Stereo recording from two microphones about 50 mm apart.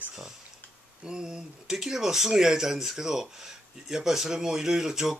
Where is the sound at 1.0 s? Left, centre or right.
Centre.